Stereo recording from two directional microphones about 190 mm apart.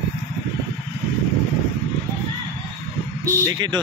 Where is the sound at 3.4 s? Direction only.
20° right (ahead or behind).